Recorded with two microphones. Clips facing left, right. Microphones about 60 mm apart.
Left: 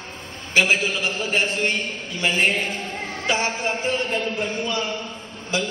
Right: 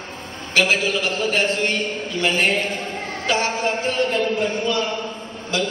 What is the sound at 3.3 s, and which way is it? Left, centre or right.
Speech, centre.